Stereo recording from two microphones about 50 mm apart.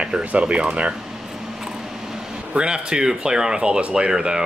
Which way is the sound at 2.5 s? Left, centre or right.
Centre.